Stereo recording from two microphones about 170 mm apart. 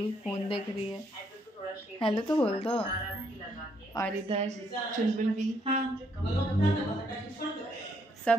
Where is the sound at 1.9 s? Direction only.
30° left (ahead or behind).